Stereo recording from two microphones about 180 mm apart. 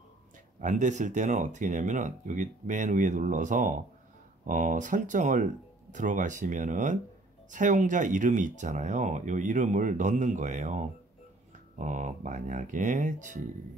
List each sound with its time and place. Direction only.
0.6 s speech: 45° right (ahead or behind)
11.8 s speech: 45° right (ahead or behind)